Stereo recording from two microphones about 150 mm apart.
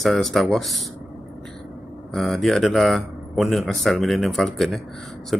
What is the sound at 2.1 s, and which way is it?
A man's voice, centre (ahead or behind).